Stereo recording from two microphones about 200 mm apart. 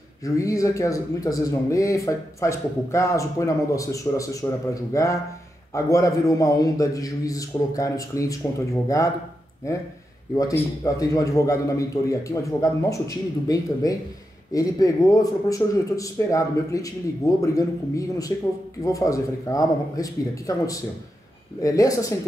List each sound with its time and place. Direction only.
0.2 s a man's voice: 15° left (ahead or behind)
10.3 s a man's voice: 20° left (ahead or behind)